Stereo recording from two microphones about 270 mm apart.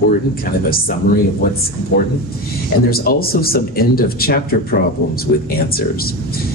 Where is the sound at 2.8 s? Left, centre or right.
Left.